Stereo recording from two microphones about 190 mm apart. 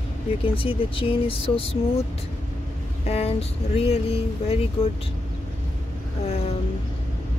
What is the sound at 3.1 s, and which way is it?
Speech, 35° left (ahead or behind).